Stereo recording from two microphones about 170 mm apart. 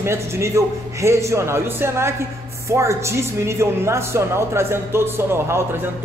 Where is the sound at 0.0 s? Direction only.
15° right (ahead or behind).